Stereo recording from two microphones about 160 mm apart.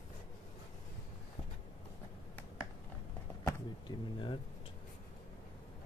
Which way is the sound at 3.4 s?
30° left (ahead or behind).